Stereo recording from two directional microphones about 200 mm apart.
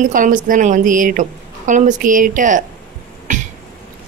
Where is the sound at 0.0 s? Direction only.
40° right (ahead or behind).